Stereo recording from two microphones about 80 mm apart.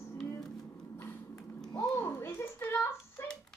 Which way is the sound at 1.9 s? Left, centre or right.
Left.